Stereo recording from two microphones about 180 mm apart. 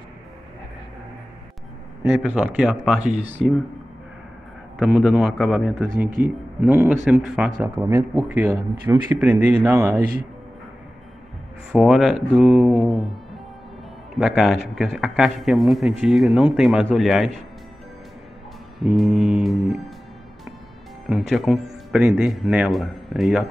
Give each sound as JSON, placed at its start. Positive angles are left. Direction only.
{"t": 2.0, "sound": "a man's voice", "side_deg": -5}
{"t": 4.7, "sound": "a man's voice", "side_deg": 0}
{"t": 11.7, "sound": "a man's voice", "side_deg": 0}
{"t": 14.1, "sound": "a man's voice", "side_deg": 0}
{"t": 18.8, "sound": "a man's voice", "side_deg": 0}
{"t": 21.1, "sound": "a man's voice", "side_deg": 0}